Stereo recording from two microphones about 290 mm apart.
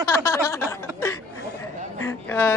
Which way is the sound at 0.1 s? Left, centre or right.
Centre.